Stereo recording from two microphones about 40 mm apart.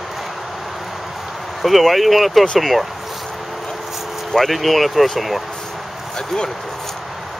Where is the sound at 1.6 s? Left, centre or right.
Centre.